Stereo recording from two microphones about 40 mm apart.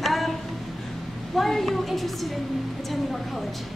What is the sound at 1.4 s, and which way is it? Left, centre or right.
Speech, centre.